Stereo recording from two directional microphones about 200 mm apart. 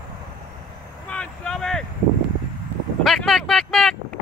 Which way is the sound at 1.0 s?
5° left (ahead or behind).